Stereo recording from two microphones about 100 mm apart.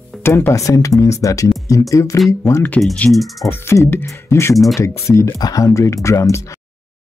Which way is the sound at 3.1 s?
Centre (ahead or behind).